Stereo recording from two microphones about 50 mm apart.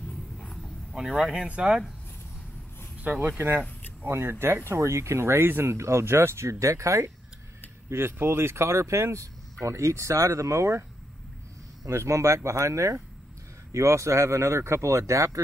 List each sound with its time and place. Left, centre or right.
0.1 s a sound: centre
1.2 s speech: centre
3.0 s speech: right
3.3 s speech: right
4.6 s speech: right
7.9 s a man's voice: right